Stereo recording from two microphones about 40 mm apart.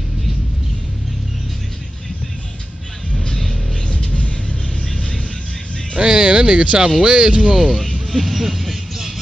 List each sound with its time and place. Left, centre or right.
3.9 s music: left
5.9 s speech: right
7.5 s vehicle: centre